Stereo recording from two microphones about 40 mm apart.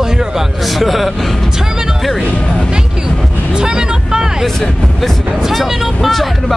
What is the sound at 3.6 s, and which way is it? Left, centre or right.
Speech, centre.